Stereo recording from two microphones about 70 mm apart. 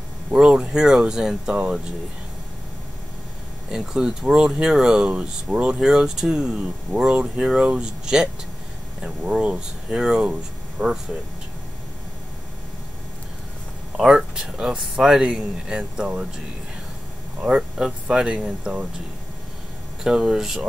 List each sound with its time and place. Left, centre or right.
0.3 s speech: centre
3.7 s speech: centre
13.9 s speech: centre
17.4 s speech: centre
20.0 s speech: centre